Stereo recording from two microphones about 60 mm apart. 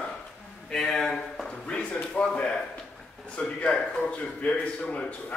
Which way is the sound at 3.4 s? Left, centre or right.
Centre.